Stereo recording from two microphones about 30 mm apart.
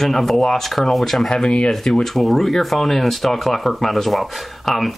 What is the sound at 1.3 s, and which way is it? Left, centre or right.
Speech, left.